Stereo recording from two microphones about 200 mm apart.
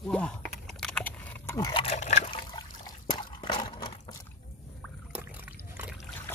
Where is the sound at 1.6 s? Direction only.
20° left (ahead or behind).